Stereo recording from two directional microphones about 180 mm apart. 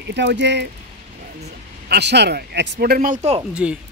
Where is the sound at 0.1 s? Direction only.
70° right (ahead or behind).